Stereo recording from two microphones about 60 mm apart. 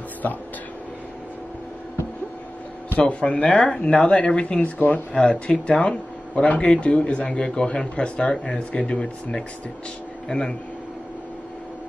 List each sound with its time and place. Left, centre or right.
0.2 s speech: left
3.0 s speech: left